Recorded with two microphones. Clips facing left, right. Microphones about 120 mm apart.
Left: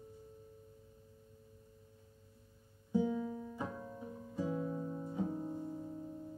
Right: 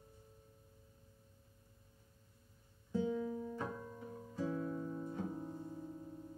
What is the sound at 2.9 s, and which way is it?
Music, 15° left (ahead or behind).